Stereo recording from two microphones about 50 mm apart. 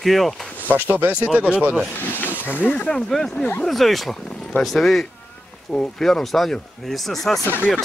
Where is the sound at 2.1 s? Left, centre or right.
Left.